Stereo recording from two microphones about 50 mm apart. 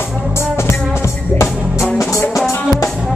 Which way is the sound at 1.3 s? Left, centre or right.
Left.